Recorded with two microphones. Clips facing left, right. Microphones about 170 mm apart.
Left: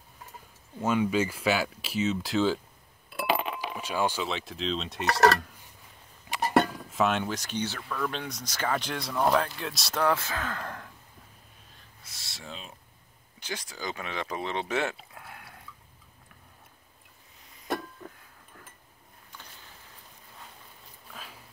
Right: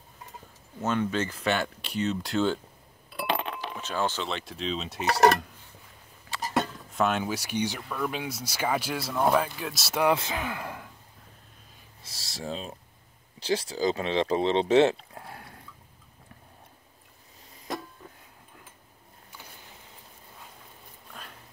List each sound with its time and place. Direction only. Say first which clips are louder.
0.7 s speech: left 2 dB; 10° left (ahead or behind)
3.1 s chink: left 1 dB; 5° left (ahead or behind)
4.3 s speech: even; centre (ahead or behind)
5.0 s speech: right 1 dB; 25° right (ahead or behind)
6.4 s a sound: left 5 dB; 60° left (ahead or behind)
6.9 s speech: even; centre (ahead or behind)
10.0 s speech: right 2 dB; 15° right (ahead or behind)
12.0 s speech: right 9 dB; 35° right (ahead or behind)
15.1 s a sound: right 4 dB; 30° right (ahead or behind)
21.1 s a sound: even; centre (ahead or behind)